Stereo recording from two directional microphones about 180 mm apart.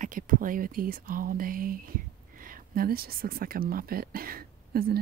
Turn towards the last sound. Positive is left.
turn(degrees=-55)  # may be behind; listen again after turning